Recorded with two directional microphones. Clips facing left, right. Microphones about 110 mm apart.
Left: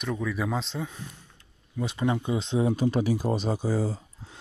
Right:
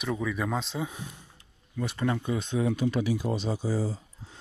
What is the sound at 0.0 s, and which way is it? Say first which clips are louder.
Speech: even; centre (ahead or behind).